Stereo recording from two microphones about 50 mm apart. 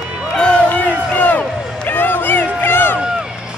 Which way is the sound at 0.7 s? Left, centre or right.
Left.